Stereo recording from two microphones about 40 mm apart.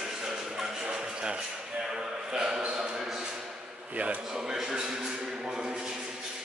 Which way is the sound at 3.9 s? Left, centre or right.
Right.